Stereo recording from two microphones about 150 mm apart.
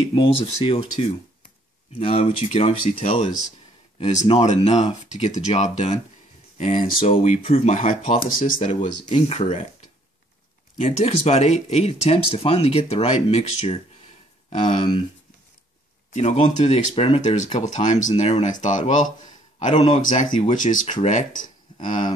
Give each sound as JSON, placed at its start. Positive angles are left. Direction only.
{"t": 0.0, "sound": "speech", "side_deg": 40}
{"t": 4.3, "sound": "speech", "side_deg": 45}
{"t": 6.6, "sound": "speech", "side_deg": 60}
{"t": 7.0, "sound": "speech", "side_deg": 40}
{"t": 8.4, "sound": "speech", "side_deg": 65}
{"t": 9.1, "sound": "speech", "side_deg": 45}
{"t": 10.8, "sound": "speech", "side_deg": 45}
{"t": 16.1, "sound": "a man's voice", "side_deg": 50}
{"t": 20.1, "sound": "speech", "side_deg": 55}